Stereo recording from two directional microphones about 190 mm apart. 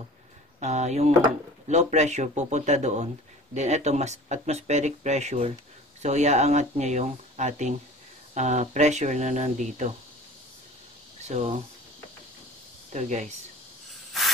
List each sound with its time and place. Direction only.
0.6 s speech: 35° right (ahead or behind)
11.3 s speech: 35° right (ahead or behind)
12.9 s speech: 40° right (ahead or behind)